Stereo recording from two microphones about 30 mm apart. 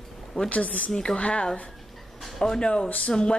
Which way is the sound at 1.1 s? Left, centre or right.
Left.